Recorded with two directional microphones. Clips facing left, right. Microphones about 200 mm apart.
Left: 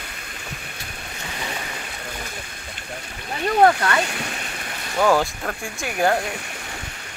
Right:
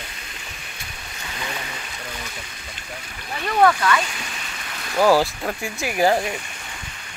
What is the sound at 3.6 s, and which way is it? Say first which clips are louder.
Speech: even; 40° left (ahead or behind).